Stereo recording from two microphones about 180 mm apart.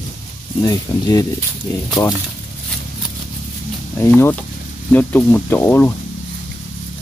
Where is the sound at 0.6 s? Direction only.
20° left (ahead or behind).